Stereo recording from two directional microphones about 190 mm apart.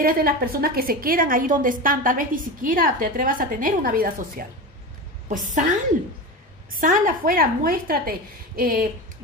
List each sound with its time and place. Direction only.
0.0 s a woman's voice: 50° right (ahead or behind)
6.7 s a woman's voice: 45° right (ahead or behind)